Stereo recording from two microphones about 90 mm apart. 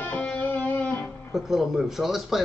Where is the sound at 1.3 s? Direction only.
5° right (ahead or behind).